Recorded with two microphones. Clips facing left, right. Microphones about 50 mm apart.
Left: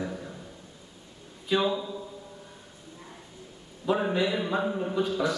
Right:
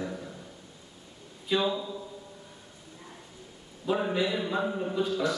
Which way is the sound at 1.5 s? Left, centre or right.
Centre.